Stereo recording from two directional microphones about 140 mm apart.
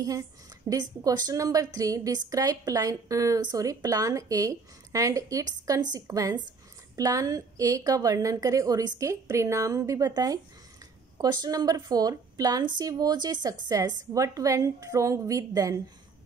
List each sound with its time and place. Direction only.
0.7 s a woman's voice: 25° right (ahead or behind)